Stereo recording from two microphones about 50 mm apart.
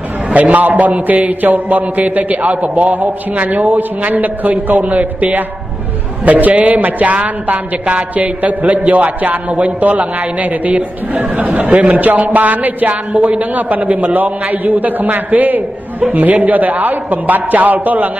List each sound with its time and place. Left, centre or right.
0.3 s a man's voice: right